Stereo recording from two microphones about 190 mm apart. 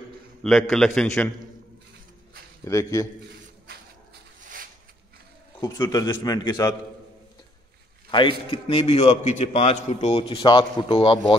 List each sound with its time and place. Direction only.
0.4 s a man's voice: centre (ahead or behind)
2.6 s a man's voice: 15° left (ahead or behind)
5.6 s a man's voice: 20° left (ahead or behind)
8.1 s a man's voice: 25° left (ahead or behind)